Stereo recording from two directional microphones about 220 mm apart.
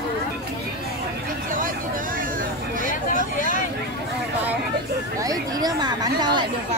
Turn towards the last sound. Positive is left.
turn(degrees=-20)  # may be behind; listen again after turning